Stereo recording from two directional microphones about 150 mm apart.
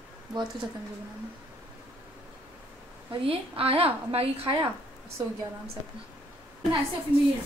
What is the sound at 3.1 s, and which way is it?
A woman's voice, 40° right (ahead or behind).